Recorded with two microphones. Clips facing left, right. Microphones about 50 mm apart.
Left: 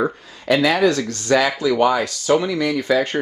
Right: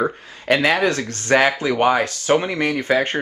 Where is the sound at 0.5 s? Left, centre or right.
Right.